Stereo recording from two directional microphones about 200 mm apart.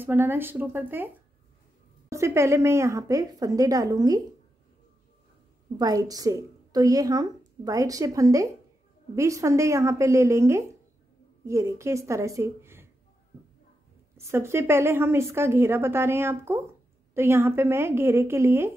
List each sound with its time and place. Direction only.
0.0 s a woman's voice: 10° right (ahead or behind)
5.8 s a woman's voice: 20° right (ahead or behind)
14.1 s a woman's voice: 15° right (ahead or behind)